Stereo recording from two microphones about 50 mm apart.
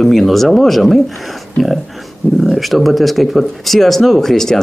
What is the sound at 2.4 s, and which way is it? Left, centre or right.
Speech, centre.